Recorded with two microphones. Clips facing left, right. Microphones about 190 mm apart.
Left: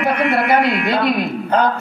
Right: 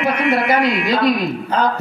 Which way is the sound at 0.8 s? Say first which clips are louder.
Right 1 dB; 60° left (ahead or behind).